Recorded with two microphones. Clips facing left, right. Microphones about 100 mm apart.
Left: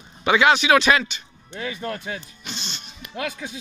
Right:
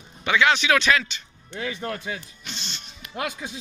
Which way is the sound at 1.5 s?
15° right (ahead or behind).